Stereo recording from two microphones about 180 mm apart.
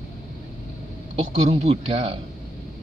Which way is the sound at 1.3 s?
35° right (ahead or behind).